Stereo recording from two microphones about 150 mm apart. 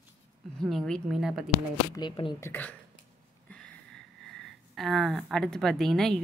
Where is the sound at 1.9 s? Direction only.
30° left (ahead or behind).